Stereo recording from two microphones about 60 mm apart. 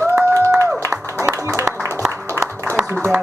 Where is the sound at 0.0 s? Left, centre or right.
Right.